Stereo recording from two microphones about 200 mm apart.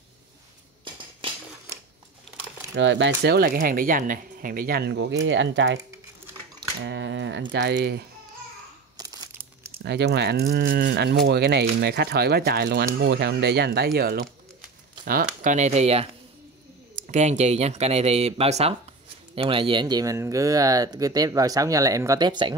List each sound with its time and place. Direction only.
1.2 s a sound: 25° right (ahead or behind)
2.7 s speech: 65° right (ahead or behind)
6.8 s speech: 65° right (ahead or behind)
8.9 s crumpling: 20° right (ahead or behind)
9.8 s speech: 55° right (ahead or behind); by 22.5 s 20° right (ahead or behind)